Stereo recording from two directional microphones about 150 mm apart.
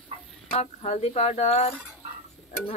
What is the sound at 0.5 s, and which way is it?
Speech, 45° left (ahead or behind).